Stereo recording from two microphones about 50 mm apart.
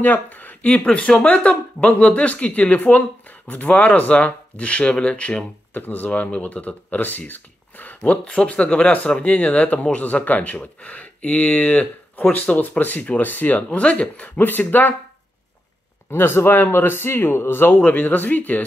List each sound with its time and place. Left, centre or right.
0.0 s speech: left
0.6 s speech: left
5.7 s speech: left
8.1 s speech: left
13.7 s speech: left
14.4 s speech: left
16.1 s speech: left
17.7 s speech: left